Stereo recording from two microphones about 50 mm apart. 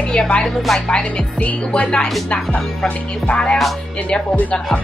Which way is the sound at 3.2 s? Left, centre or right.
Left.